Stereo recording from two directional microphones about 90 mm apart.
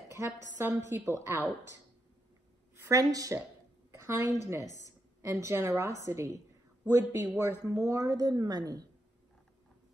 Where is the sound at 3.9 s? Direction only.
30° right (ahead or behind).